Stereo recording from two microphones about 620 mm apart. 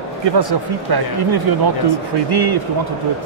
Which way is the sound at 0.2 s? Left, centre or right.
Right.